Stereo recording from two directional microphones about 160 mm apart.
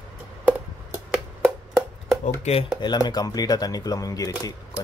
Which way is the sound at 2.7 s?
25° left (ahead or behind).